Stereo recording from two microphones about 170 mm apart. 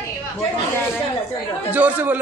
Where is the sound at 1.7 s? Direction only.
10° right (ahead or behind).